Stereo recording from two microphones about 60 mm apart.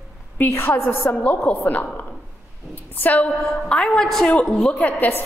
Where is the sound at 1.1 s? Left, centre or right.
Left.